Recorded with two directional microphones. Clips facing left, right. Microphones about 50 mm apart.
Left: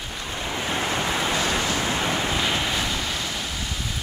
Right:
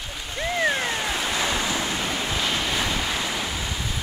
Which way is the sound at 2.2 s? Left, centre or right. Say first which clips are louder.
Left 2 dB; centre.